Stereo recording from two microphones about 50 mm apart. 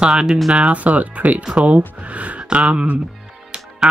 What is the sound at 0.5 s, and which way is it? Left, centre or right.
Speech, right.